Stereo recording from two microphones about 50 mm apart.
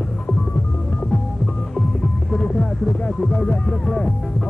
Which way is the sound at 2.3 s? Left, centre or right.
Centre.